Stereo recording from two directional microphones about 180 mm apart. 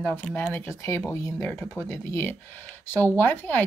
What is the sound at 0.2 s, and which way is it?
Speech, 5° left (ahead or behind).